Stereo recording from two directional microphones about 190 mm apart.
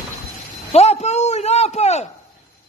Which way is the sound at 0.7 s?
35° left (ahead or behind).